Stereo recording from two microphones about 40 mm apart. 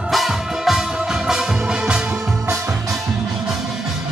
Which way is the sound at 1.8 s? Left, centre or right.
Right.